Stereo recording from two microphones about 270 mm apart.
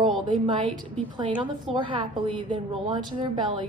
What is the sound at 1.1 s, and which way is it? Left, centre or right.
A woman's voice, centre.